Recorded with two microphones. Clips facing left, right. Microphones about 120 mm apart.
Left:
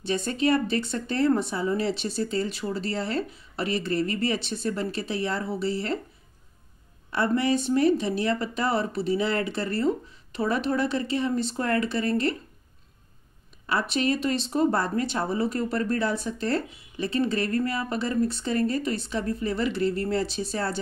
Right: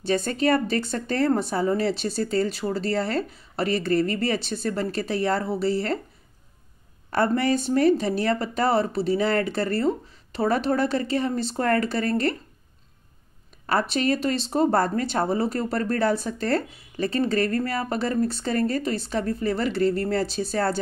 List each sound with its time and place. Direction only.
0.0 s speech: 40° right (ahead or behind)
7.1 s speech: 40° right (ahead or behind)
13.7 s speech: 40° right (ahead or behind)